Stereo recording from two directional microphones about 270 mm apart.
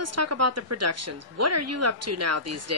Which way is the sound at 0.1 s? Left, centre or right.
Right.